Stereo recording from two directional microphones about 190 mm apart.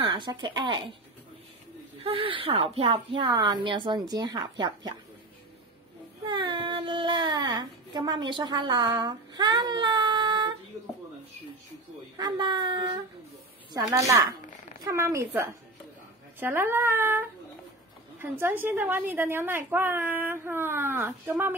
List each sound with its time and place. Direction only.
0.0 s speech: 25° right (ahead or behind)
2.0 s a woman's voice: 30° right (ahead or behind)
6.2 s speech: 25° right (ahead or behind)
12.2 s a woman's voice: 25° right (ahead or behind)